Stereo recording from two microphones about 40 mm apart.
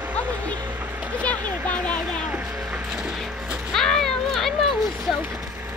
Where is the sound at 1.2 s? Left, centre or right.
Left.